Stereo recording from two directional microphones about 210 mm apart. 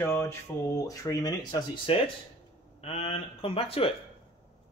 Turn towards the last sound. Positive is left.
turn(degrees=25)  # may be behind; listen again after turning